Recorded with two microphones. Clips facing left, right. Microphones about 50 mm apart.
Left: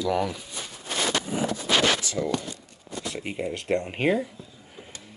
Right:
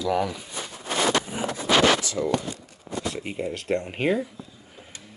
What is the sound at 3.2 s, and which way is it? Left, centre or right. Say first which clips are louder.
Speech: even; centre.